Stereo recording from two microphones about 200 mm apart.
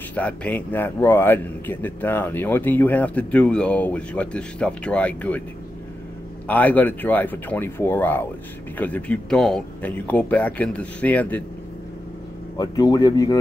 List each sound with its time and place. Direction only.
0.1 s speech: 5° left (ahead or behind)
6.4 s speech: 10° left (ahead or behind)
12.5 s speech: 20° left (ahead or behind)